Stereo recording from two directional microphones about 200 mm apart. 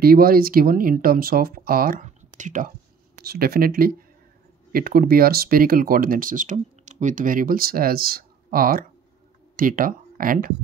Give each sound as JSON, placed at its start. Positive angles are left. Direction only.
{"t": 0.0, "sound": "speech", "side_deg": -45}
{"t": 3.2, "sound": "speech", "side_deg": -50}